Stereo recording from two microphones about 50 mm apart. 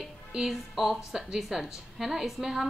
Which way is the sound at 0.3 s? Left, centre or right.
Centre.